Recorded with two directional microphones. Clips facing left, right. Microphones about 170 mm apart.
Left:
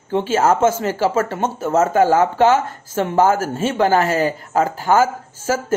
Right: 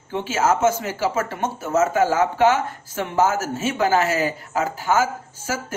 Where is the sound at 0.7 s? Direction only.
50° left (ahead or behind).